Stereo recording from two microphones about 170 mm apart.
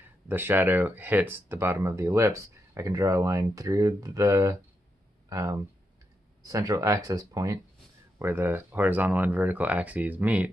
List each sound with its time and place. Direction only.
0.0 s speech: 10° right (ahead or behind)